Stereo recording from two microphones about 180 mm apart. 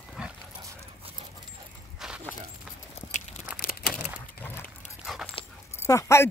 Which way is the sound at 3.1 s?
40° left (ahead or behind).